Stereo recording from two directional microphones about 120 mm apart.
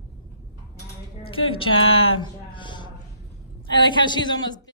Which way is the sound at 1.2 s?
50° left (ahead or behind).